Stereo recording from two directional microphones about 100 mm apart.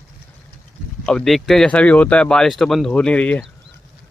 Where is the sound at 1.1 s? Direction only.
5° left (ahead or behind).